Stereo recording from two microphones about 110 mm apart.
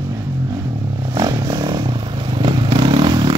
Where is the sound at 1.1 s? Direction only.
30° right (ahead or behind).